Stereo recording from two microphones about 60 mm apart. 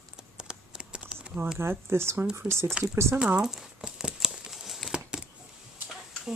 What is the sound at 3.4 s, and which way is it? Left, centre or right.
Speech, centre.